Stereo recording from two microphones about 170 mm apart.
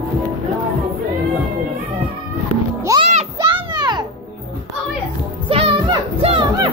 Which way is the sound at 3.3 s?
25° right (ahead or behind).